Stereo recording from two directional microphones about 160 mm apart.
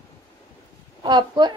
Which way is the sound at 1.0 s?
25° right (ahead or behind).